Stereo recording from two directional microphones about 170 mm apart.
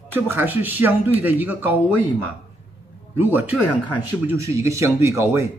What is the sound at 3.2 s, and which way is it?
A man's voice, 10° right (ahead or behind).